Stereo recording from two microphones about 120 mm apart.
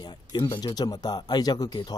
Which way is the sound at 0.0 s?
35° left (ahead or behind).